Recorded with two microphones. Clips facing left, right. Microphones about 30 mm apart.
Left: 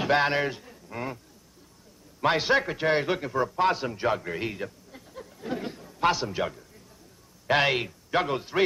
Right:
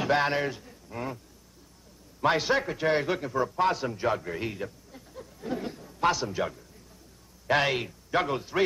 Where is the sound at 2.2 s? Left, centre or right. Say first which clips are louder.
Left 2 dB; centre.